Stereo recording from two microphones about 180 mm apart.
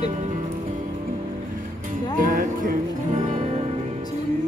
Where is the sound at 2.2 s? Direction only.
50° right (ahead or behind).